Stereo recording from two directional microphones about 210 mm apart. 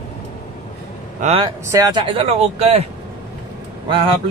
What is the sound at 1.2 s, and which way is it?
Speech, 30° right (ahead or behind).